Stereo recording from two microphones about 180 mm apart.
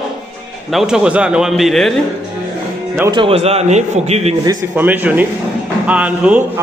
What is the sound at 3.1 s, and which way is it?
A man's voice, 30° right (ahead or behind).